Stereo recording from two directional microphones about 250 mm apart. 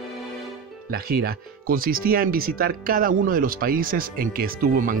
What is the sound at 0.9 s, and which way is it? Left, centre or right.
Speech, right.